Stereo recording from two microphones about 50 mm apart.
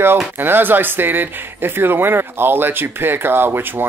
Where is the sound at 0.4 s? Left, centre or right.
Right.